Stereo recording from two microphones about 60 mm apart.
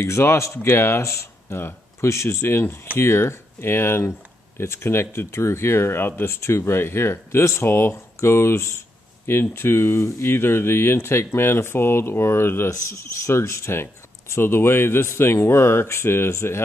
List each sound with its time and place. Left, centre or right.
0.0 s speech: left
2.0 s speech: left
10.3 s speech: left